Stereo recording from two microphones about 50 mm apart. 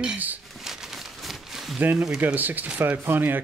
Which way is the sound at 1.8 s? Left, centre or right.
Right.